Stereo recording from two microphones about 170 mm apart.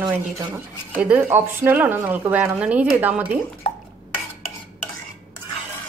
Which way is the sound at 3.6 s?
35° left (ahead or behind).